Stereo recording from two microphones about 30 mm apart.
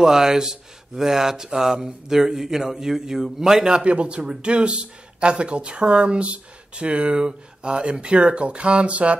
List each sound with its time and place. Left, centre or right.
0.0 s speech: centre
3.8 s speech: right